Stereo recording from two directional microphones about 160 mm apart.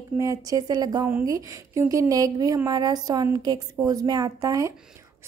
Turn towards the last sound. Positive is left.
turn(degrees=-20)  # may be behind; listen again after turning